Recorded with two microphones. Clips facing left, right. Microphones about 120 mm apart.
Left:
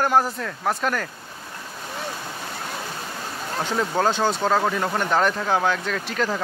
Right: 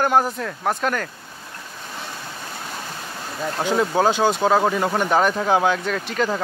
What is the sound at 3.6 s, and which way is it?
Speech, 5° right (ahead or behind).